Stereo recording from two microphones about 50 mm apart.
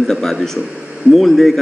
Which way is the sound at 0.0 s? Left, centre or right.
Centre.